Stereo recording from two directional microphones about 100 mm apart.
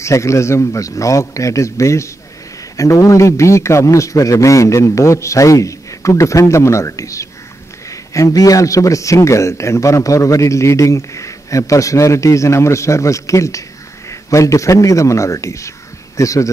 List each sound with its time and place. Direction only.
0.0 s a man's voice: 30° left (ahead or behind)